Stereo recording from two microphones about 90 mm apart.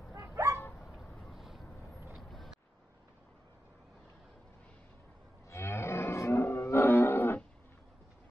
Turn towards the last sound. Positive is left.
turn(degrees=25)  # may be behind; listen again after turning